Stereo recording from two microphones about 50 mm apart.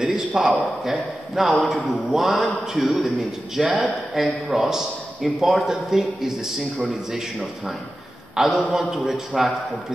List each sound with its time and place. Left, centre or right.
0.0 s a sound: right
0.8 s a man's voice: centre
8.4 s a man's voice: centre
9.0 s a man's voice: centre